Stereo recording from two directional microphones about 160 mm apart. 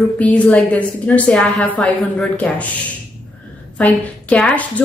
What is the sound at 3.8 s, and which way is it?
A woman's voice, 10° left (ahead or behind).